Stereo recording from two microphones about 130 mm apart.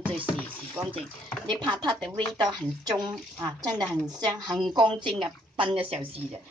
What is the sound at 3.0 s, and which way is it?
A woman's voice, 30° right (ahead or behind).